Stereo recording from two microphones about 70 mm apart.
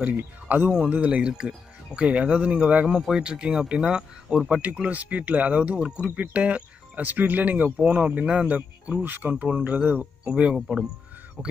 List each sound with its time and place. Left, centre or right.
0.0 s speech: right
3.0 s speech: centre; by 10.3 s right
10.3 s speech: centre